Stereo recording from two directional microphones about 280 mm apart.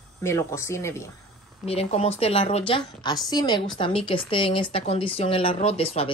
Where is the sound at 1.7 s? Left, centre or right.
Left.